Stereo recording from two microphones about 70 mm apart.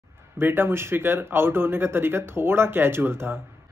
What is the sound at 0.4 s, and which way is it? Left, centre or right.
A man's voice, right.